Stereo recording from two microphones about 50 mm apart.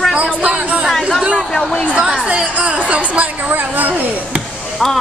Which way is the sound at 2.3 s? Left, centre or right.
Right.